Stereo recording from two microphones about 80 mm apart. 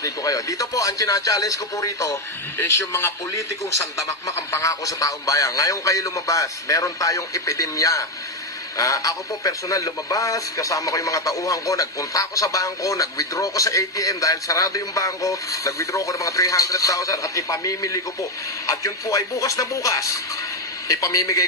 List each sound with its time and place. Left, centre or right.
0.0 s speech: left
2.6 s a man's voice: left
4.5 s speech: left